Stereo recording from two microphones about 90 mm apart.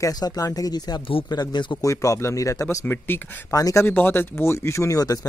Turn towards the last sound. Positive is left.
turn(degrees=40)  # may be behind; listen again after turning